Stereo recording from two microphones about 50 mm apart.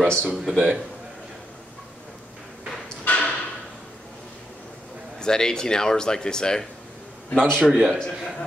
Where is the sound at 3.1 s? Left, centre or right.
Left.